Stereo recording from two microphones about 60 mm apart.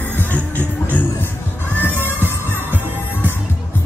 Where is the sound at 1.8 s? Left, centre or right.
Left.